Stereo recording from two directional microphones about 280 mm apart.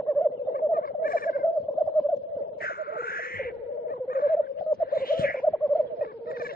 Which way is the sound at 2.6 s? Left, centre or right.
Left.